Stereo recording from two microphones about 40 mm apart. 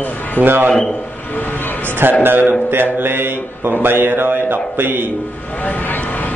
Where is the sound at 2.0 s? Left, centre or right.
Right.